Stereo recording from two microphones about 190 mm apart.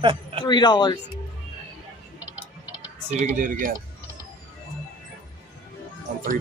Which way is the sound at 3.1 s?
40° right (ahead or behind).